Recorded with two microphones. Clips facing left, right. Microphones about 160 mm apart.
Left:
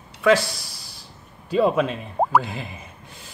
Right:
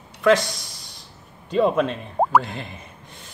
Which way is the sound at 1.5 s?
5° left (ahead or behind).